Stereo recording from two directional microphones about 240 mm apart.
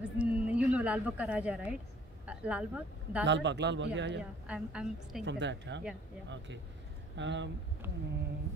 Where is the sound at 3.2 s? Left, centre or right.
Right.